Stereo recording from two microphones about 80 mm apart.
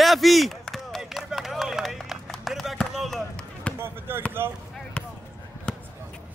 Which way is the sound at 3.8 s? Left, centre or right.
Right.